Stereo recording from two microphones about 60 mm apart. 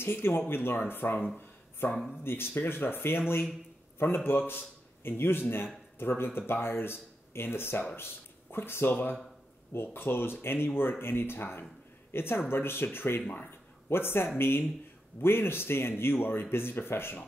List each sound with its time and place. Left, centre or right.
0.0 s a man's voice: left